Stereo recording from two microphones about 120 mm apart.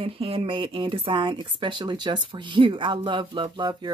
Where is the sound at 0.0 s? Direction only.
50° right (ahead or behind).